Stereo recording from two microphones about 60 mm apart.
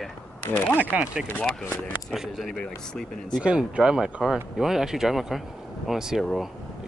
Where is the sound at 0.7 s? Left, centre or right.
Right.